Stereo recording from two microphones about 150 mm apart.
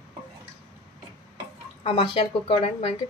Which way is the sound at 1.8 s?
40° left (ahead or behind).